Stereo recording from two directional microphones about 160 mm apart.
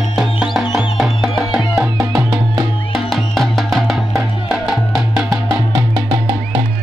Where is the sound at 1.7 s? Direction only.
20° right (ahead or behind).